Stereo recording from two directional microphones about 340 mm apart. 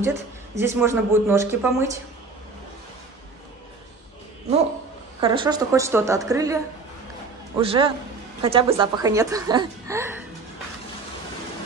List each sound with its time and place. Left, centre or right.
0.0 s speech: centre
5.2 s speech: centre